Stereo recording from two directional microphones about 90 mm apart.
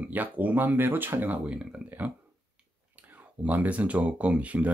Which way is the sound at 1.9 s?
20° right (ahead or behind).